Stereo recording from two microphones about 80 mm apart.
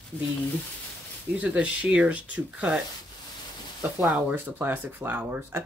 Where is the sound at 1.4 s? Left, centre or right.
Centre.